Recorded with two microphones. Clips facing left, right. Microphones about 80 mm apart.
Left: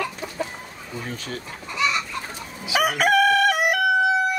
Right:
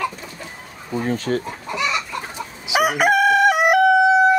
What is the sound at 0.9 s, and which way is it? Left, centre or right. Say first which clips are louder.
Speech: right 11 dB; right.